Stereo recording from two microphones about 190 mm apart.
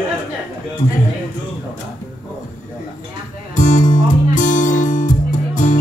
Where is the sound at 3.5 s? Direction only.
45° left (ahead or behind).